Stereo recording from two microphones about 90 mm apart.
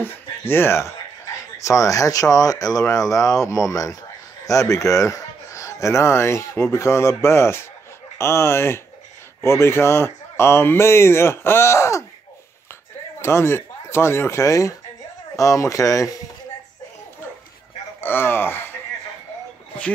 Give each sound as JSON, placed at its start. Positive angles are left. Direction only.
{"t": 0.0, "sound": "speech", "side_deg": 25}
{"t": 13.2, "sound": "speech", "side_deg": 30}
{"t": 18.0, "sound": "speech", "side_deg": 25}